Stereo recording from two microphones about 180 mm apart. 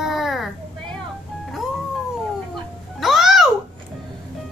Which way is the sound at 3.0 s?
Centre (ahead or behind).